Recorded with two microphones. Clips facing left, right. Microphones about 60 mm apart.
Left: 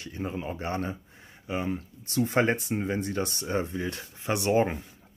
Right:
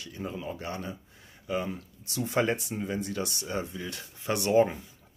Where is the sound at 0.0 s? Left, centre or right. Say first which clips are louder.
Left 3 dB; left.